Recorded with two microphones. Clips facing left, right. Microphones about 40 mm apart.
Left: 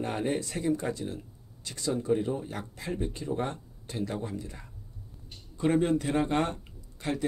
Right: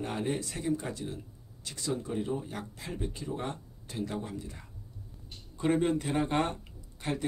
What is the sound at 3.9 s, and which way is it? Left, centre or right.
Speech, left.